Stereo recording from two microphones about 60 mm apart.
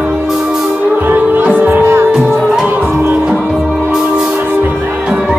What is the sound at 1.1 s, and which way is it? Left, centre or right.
Music, right.